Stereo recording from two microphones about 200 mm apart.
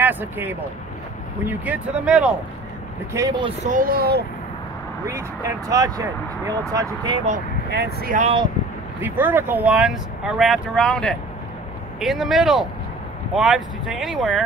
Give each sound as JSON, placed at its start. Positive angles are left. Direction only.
{"t": 0.0, "sound": "speech", "side_deg": -10}
{"t": 3.1, "sound": "speech", "side_deg": -15}
{"t": 3.4, "sound": "speech", "side_deg": -40}
{"t": 5.0, "sound": "speech", "side_deg": -15}
{"t": 7.7, "sound": "speech", "side_deg": -50}
{"t": 8.2, "sound": "speech", "side_deg": -30}
{"t": 9.0, "sound": "speech", "side_deg": -10}